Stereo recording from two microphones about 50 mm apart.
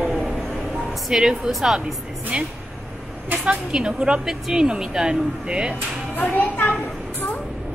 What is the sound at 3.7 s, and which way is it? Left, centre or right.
A woman's voice, centre.